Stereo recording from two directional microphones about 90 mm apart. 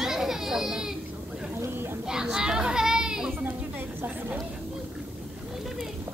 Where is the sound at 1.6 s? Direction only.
25° right (ahead or behind).